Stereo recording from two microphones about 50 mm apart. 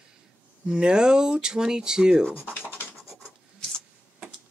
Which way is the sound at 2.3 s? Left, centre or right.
Left.